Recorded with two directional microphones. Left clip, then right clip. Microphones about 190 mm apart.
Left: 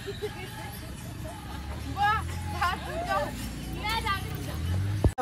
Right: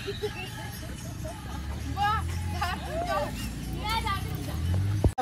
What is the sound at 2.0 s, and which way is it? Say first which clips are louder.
Hubbub: left 1 dB; 10° left (ahead or behind).